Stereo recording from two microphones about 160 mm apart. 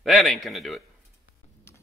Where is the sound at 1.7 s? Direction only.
15° left (ahead or behind).